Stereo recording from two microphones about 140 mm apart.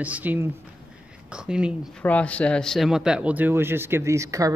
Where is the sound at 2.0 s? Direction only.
10° left (ahead or behind).